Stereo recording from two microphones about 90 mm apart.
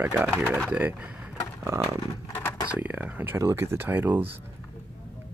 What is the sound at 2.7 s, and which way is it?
Speech, 15° right (ahead or behind).